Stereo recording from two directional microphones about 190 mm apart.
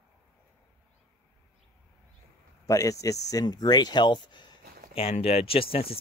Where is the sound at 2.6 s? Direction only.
15° left (ahead or behind).